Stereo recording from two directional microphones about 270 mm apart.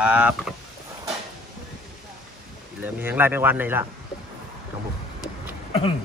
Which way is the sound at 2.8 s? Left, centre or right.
Centre.